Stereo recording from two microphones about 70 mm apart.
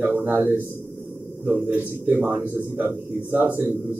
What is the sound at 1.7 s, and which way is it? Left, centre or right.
A man's voice, right.